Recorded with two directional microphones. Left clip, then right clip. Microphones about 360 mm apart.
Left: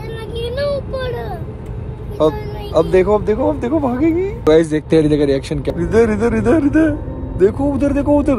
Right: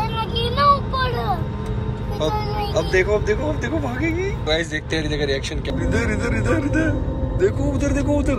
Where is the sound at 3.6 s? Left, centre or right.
Centre.